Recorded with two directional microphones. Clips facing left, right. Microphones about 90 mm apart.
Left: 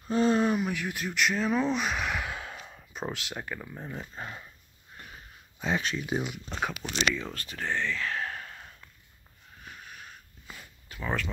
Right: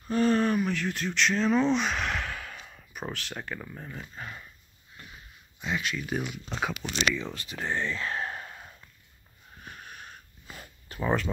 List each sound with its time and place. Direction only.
0.1 s speech: 20° left (ahead or behind)
2.6 s speech: 25° left (ahead or behind); by 3.8 s 10° left (ahead or behind)
3.8 s speech: 25° left (ahead or behind)
4.9 s a sound: 40° left (ahead or behind)
6.0 s speech: 15° left (ahead or behind)
6.3 s speech: centre (ahead or behind)
7.3 s speech: 15° right (ahead or behind)
7.9 s a sound: 25° right (ahead or behind)
9.7 s wheeze: 40° right (ahead or behind)
10.5 s a sound: 40° right (ahead or behind)
11.0 s speech: 20° right (ahead or behind)